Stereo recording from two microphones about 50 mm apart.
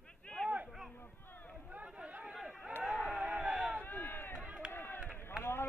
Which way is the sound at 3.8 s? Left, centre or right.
Left.